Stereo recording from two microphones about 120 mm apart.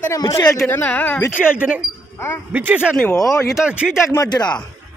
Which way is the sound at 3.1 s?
25° left (ahead or behind).